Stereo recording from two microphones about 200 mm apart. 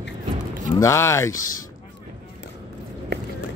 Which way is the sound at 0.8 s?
15° left (ahead or behind).